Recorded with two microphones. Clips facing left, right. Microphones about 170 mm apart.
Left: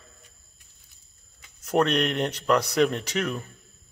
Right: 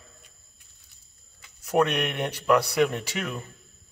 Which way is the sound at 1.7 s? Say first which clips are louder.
Left 1 dB; 10° right (ahead or behind).